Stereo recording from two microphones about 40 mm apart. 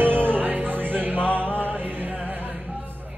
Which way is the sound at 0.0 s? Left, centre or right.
Right.